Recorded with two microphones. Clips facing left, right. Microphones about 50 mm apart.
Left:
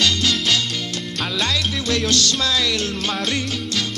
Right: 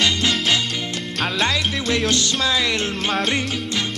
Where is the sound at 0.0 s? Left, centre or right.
Right.